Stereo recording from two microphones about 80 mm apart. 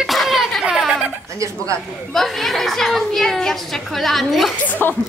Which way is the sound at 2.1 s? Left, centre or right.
Centre.